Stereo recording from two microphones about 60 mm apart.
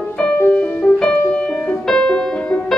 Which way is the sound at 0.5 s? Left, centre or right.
Left.